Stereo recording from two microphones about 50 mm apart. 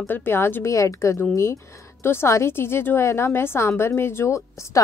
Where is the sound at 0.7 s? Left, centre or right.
Left.